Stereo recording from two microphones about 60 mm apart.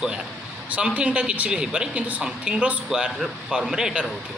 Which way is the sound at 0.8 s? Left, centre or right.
Centre.